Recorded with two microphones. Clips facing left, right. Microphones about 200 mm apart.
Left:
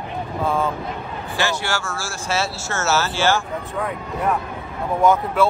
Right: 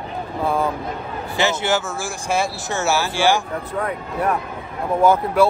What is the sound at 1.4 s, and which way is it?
Speech, 20° right (ahead or behind).